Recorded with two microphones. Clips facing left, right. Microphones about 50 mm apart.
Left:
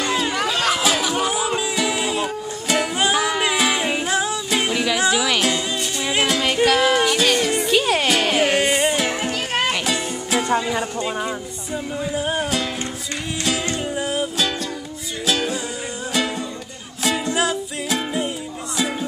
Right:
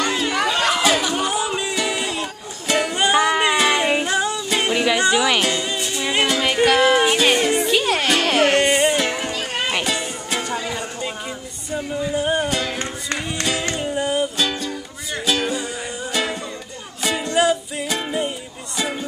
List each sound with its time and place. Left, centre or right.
0.0 s music: centre
7.2 s music: right
7.5 s music: centre
10.5 s music: centre
11.0 s music: centre